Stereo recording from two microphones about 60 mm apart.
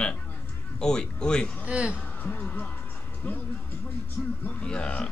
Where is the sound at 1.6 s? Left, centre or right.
Right.